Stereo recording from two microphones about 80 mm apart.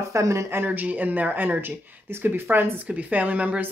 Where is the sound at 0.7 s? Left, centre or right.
Centre.